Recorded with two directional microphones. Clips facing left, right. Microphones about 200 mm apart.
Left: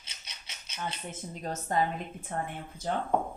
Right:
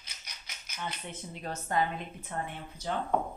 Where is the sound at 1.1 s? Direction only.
40° left (ahead or behind).